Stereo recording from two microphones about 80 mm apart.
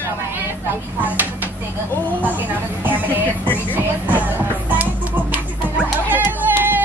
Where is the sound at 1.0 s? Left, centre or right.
Right.